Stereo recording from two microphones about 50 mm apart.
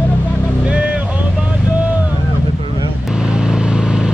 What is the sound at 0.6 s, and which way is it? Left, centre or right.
Music, right.